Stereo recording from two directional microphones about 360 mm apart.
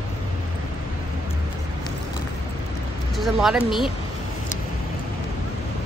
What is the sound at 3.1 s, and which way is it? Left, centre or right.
Speech, centre.